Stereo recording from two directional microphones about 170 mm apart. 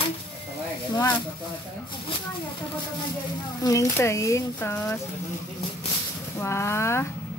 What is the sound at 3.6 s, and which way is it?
Speech, 15° left (ahead or behind).